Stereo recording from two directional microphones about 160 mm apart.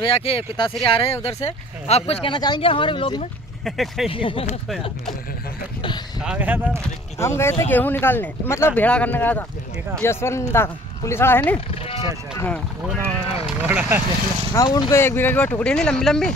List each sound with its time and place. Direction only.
0.0 s speech: 35° left (ahead or behind)
3.6 s speech: centre (ahead or behind)
4.1 s speech: 35° left (ahead or behind)
6.2 s speech: 10° right (ahead or behind)
7.2 s speech: 15° left (ahead or behind)
12.8 s speech: 15° right (ahead or behind)
14.5 s speech: 20° left (ahead or behind); by 16.3 s 5° left (ahead or behind)